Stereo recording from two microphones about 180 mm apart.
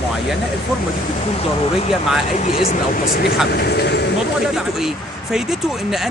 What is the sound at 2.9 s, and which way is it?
Speech, 60° left (ahead or behind).